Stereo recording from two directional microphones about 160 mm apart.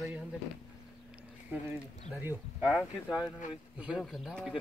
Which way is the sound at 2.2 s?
10° right (ahead or behind).